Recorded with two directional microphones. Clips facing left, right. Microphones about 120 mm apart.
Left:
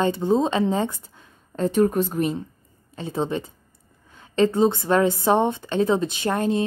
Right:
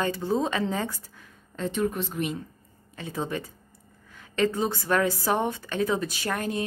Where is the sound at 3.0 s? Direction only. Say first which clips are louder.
Left 6 dB; 25° left (ahead or behind).